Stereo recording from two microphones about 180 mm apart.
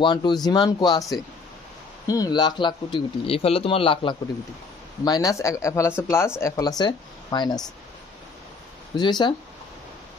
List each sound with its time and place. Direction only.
0.0 s speech: 25° left (ahead or behind)
8.9 s speech: 25° left (ahead or behind)